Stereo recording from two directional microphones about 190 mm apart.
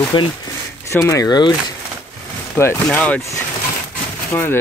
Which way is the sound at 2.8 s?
5° left (ahead or behind).